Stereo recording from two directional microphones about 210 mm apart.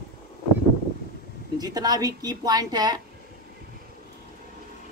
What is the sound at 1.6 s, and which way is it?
A woman's voice, 20° right (ahead or behind).